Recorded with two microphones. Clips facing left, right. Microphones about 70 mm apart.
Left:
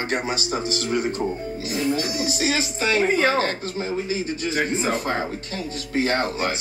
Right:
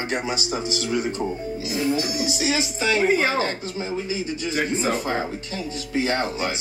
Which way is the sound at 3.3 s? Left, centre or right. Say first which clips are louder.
Left 2 dB; left.